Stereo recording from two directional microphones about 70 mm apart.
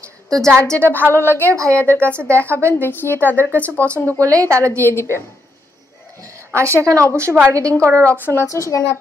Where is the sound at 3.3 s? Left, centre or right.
Right.